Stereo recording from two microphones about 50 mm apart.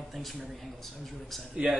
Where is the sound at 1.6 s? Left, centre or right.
Right.